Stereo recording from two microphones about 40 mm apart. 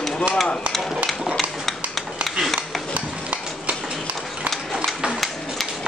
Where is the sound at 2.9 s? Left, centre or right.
Right.